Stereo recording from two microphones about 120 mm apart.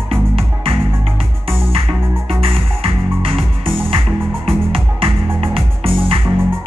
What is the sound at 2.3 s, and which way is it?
Music, 50° right (ahead or behind).